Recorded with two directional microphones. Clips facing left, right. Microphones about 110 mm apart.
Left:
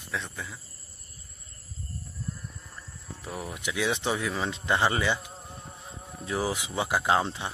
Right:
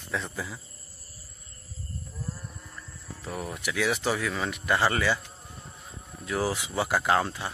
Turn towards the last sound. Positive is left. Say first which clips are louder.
# even
turn(degrees=20)  # may be behind; listen again after turning